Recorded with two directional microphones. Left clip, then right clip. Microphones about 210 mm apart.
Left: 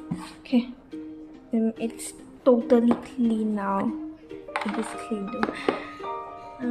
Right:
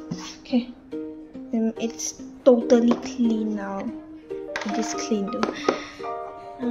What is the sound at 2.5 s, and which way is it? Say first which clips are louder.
Speech: right 3 dB; centre (ahead or behind).